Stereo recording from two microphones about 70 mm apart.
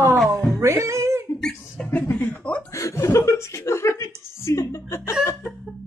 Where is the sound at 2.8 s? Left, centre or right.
Left.